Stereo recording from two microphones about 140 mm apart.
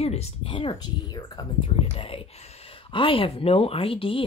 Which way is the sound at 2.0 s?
45° left (ahead or behind).